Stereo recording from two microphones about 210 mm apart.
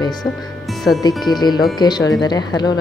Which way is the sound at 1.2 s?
20° left (ahead or behind).